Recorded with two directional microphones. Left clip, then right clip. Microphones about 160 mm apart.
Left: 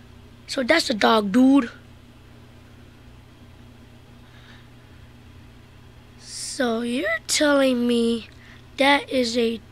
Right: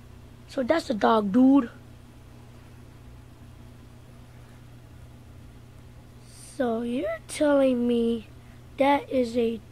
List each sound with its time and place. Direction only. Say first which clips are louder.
0.5 s speech: left 5 dB; 10° left (ahead or behind)
6.5 s speech: left 3 dB; 20° left (ahead or behind)